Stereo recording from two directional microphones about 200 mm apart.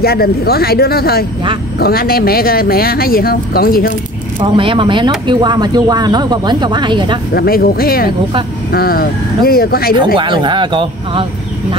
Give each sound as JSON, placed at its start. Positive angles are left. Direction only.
{"t": 0.0, "sound": "speech", "side_deg": 50}
{"t": 4.4, "sound": "speech", "side_deg": -25}
{"t": 7.3, "sound": "speech", "side_deg": 45}
{"t": 10.1, "sound": "speech", "side_deg": -25}